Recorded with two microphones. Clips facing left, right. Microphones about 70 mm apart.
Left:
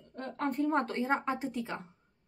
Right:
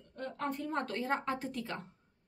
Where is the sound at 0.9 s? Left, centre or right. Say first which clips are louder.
Left 3 dB; centre.